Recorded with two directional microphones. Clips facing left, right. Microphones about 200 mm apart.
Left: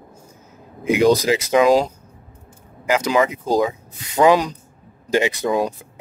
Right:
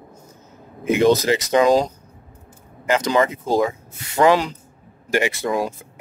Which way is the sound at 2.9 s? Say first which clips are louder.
Even; 10° left (ahead or behind).